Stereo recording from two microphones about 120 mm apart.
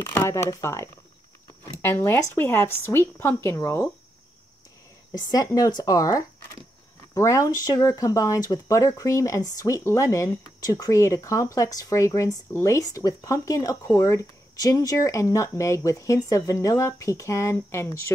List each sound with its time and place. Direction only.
0.0 s speech: 20° left (ahead or behind)
5.1 s speech: 30° left (ahead or behind)